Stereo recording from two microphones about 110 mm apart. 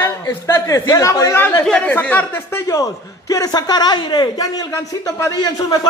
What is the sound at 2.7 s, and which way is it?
A man's voice, 30° left (ahead or behind).